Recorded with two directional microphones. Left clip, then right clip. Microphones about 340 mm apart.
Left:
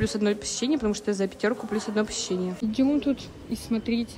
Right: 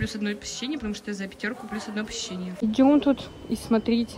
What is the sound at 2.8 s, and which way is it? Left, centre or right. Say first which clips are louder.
Speech: right 5 dB; centre.